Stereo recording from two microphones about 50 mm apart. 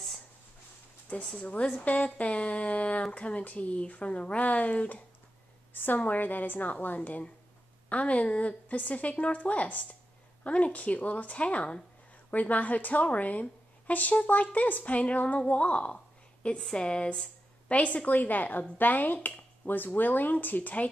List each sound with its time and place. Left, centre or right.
1.2 s speech: centre
5.7 s a woman's voice: left